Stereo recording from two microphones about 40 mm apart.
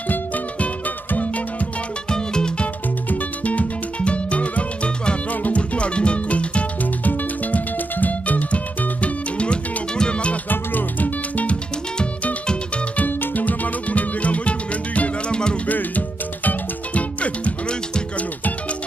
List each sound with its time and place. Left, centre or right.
0.1 s music: left
2.0 s music: left
3.1 s music: left
5.6 s music: left
7.1 s music: left
9.0 s music: left
10.5 s music: left
12.4 s music: left
13.0 s music: left
16.4 s music: left